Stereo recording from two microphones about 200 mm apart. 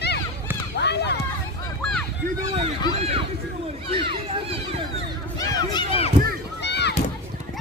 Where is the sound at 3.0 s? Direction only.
30° right (ahead or behind).